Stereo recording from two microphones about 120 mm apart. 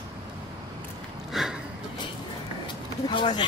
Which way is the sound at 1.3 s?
5° right (ahead or behind).